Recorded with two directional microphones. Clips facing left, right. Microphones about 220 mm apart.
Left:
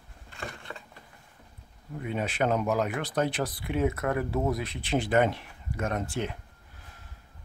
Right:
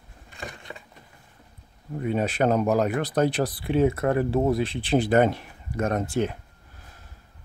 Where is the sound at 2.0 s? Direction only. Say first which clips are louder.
Right 5 dB; 40° right (ahead or behind).